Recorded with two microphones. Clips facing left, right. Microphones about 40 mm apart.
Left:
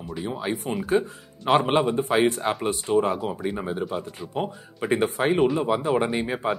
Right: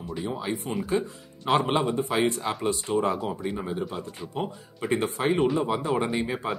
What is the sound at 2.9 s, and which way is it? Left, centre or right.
Speech, centre.